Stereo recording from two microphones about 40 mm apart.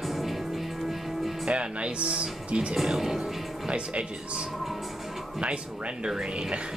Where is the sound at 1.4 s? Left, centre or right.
Right.